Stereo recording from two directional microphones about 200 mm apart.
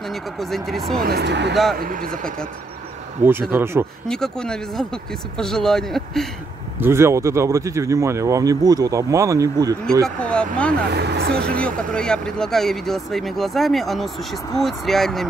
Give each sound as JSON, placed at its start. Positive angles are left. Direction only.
{"t": 0.1, "sound": "speech", "side_deg": 0}
{"t": 1.0, "sound": "speech", "side_deg": -55}
{"t": 1.8, "sound": "speech", "side_deg": -45}
{"t": 3.2, "sound": "speech", "side_deg": -40}
{"t": 3.5, "sound": "speech", "side_deg": -10}
{"t": 4.1, "sound": "speech", "side_deg": 5}
{"t": 6.8, "sound": "speech", "side_deg": -15}
{"t": 10.0, "sound": "speech", "side_deg": 5}
{"t": 10.9, "sound": "speech", "side_deg": -55}
{"t": 11.6, "sound": "speech", "side_deg": 5}